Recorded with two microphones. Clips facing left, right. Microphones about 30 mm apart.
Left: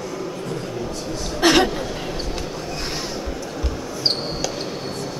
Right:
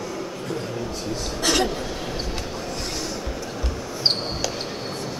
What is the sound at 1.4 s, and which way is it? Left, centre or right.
Chuckle, left.